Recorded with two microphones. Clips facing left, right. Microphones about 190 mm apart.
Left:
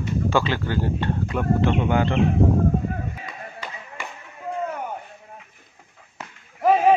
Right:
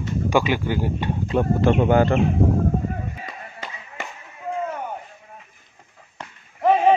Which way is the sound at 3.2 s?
45° right (ahead or behind).